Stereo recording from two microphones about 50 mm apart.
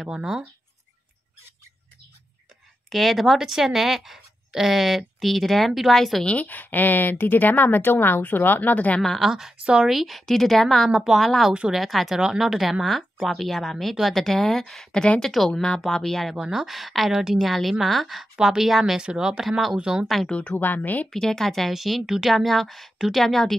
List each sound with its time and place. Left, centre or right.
0.0 s speech: centre
2.9 s a woman's voice: centre
6.2 s a woman's voice: left
9.2 s a woman's voice: centre
16.3 s a woman's voice: centre
17.1 s speech: centre
17.4 s a woman's voice: centre
20.2 s speech: left
20.6 s a woman's voice: left
21.1 s speech: centre
21.7 s a woman's voice: centre